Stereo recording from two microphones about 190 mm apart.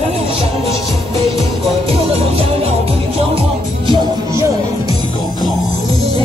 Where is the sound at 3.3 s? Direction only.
25° right (ahead or behind).